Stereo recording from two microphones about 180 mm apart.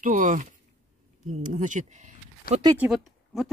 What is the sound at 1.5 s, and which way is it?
Speech, 45° right (ahead or behind).